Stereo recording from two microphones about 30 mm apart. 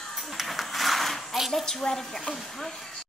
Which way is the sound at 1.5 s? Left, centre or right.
Centre.